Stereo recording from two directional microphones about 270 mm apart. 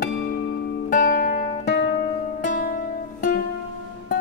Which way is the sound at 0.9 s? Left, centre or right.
Left.